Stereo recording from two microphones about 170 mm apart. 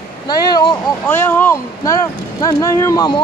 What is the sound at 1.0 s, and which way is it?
Speech, 10° left (ahead or behind).